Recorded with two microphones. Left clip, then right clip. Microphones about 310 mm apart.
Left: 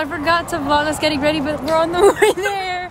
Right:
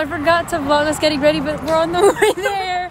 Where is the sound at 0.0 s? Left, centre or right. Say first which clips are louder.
Right 2 dB; centre.